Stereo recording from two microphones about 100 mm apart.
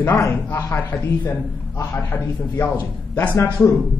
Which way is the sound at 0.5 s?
20° left (ahead or behind).